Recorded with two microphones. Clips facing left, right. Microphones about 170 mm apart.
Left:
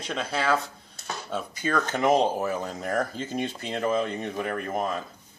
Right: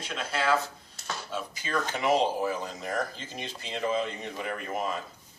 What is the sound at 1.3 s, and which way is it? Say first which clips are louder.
Speech: left 8 dB; 50° left (ahead or behind).